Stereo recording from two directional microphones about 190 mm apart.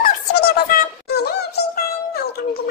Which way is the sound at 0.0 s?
55° left (ahead or behind).